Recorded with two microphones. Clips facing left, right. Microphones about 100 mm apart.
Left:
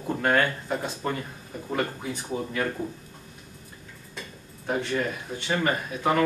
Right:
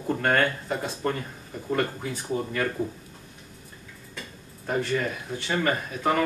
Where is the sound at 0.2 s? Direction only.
5° left (ahead or behind).